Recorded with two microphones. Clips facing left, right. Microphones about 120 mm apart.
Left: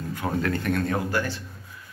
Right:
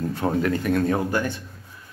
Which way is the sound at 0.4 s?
15° right (ahead or behind).